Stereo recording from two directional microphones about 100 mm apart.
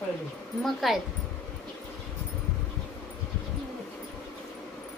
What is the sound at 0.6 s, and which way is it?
Speech, centre (ahead or behind).